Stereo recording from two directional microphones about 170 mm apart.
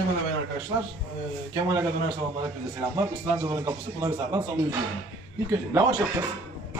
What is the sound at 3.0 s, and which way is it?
A man's voice, 20° right (ahead or behind).